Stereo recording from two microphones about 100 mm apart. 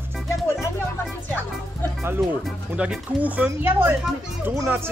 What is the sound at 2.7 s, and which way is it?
Speech, 15° right (ahead or behind).